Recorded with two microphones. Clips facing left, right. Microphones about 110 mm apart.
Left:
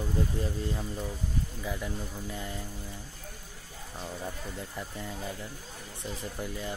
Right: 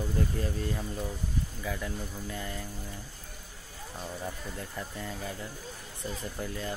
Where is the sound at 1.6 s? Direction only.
20° left (ahead or behind).